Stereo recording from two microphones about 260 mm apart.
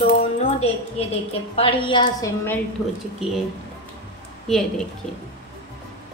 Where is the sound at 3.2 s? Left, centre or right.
Centre.